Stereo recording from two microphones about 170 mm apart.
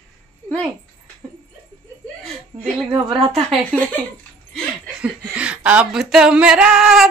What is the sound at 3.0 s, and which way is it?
Speech, 30° right (ahead or behind).